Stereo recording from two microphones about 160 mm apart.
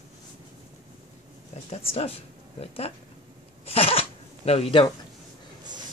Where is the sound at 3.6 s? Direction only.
35° left (ahead or behind).